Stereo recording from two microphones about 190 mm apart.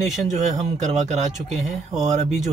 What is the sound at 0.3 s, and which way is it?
A man's voice, 40° right (ahead or behind).